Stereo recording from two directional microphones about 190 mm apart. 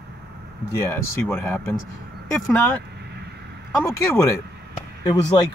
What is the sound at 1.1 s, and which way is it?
Speech, 10° left (ahead or behind).